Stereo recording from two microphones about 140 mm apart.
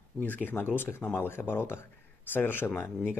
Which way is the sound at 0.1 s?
5° left (ahead or behind).